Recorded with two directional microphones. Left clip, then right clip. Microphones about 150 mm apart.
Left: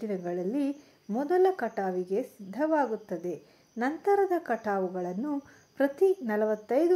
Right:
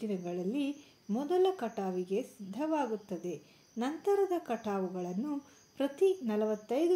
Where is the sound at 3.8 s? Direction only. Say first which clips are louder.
Left 5 dB; 20° left (ahead or behind).